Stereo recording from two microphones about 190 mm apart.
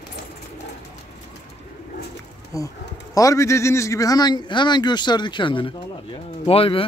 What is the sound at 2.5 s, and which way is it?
A man's voice, 15° left (ahead or behind).